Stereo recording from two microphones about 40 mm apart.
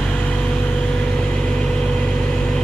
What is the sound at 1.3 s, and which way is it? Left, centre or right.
Vehicle, left.